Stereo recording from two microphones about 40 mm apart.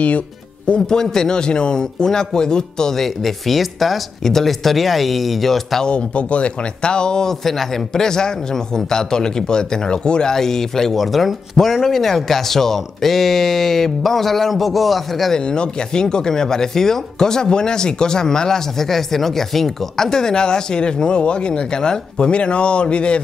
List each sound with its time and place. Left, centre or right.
0.7 s speech: centre
3.0 s speech: centre
5.9 s speech: left
10.3 s speech: centre
15.3 s a man's voice: left